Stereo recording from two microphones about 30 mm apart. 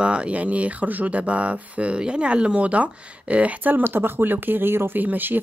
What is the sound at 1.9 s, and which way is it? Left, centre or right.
Speech, right.